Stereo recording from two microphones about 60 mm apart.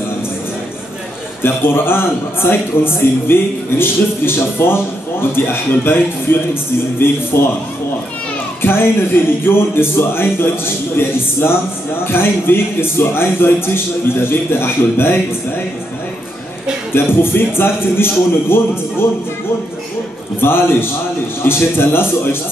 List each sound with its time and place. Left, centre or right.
1.4 s speech: left
8.6 s speech: left
16.9 s speech: left
20.3 s speech: left